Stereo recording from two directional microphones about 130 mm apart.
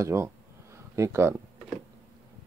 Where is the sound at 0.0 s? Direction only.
20° right (ahead or behind).